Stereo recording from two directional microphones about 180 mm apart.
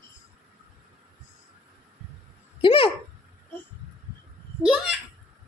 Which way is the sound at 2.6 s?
30° left (ahead or behind).